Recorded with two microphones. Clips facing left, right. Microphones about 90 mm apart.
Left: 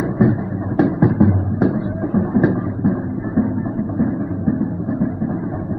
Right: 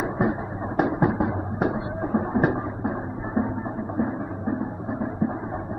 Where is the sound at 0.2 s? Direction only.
5° right (ahead or behind).